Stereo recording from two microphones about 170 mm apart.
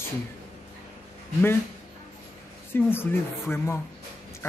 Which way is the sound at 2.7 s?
15° left (ahead or behind).